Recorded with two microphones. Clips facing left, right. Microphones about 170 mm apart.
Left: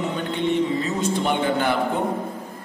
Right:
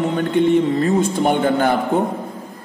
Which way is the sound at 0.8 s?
50° right (ahead or behind).